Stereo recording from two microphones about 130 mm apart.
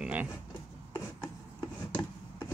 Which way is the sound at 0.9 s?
25° left (ahead or behind).